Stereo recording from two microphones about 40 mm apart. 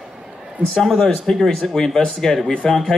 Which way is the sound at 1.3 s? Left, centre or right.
Centre.